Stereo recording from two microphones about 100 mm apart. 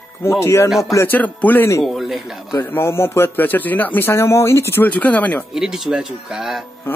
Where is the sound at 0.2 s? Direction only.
25° left (ahead or behind).